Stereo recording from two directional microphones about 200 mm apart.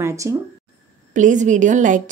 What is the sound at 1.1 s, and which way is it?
Speech, 40° right (ahead or behind).